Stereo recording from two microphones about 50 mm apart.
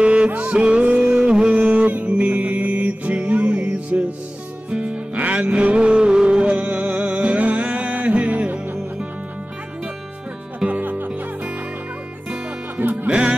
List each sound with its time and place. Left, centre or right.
0.0 s music: right
7.3 s music: right
10.7 s music: right
12.8 s music: right
13.1 s music: right